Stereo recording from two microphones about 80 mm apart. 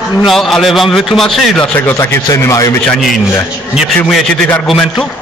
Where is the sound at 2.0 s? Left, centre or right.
Left.